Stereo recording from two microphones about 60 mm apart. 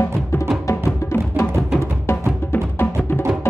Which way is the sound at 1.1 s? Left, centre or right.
Left.